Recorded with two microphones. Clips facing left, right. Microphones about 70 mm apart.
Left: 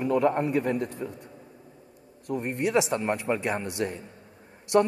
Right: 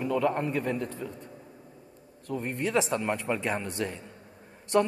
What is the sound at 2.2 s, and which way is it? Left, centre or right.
A man's voice, centre.